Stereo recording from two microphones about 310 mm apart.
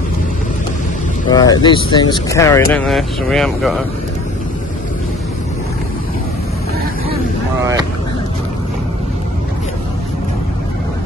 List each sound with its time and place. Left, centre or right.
1.3 s speech: centre